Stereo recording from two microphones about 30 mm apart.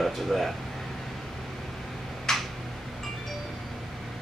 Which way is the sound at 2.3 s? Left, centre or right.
Centre.